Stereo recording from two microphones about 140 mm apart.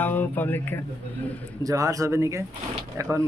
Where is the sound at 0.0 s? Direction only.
15° left (ahead or behind).